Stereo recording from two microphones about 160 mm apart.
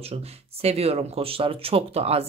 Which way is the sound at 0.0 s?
40° right (ahead or behind).